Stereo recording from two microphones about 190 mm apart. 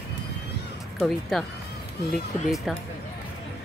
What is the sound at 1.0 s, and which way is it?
Speech, centre (ahead or behind).